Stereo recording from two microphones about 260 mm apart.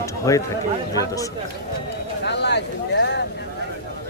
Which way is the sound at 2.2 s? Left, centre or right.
Left.